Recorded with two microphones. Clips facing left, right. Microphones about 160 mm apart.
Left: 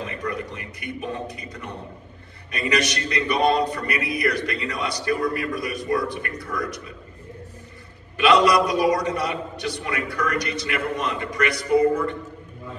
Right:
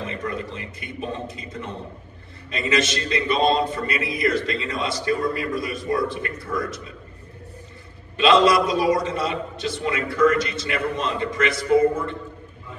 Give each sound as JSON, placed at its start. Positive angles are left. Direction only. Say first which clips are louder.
{"t": 0.0, "sound": "a sound", "louder": "even", "side_deg": -25}
{"t": 2.5, "sound": "a man's voice", "louder": "right 1 dB", "side_deg": -25}
{"t": 8.2, "sound": "a man's voice", "louder": "right 1 dB", "side_deg": -25}